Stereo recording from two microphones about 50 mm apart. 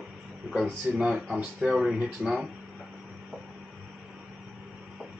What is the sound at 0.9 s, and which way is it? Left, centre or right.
Speech, centre.